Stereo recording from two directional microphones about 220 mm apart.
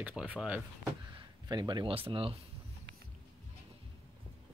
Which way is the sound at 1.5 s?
20° right (ahead or behind).